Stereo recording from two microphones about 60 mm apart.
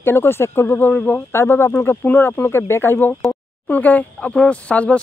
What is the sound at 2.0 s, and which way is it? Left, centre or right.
Speech, left.